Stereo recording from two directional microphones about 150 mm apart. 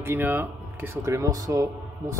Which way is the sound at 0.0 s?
15° right (ahead or behind).